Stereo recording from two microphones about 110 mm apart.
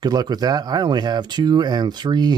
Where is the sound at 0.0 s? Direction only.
40° right (ahead or behind).